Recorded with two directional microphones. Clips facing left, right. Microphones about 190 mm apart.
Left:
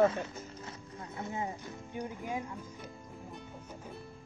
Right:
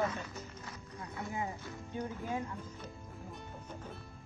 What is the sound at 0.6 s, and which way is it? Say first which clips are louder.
Music: left 1 dB; 25° left (ahead or behind).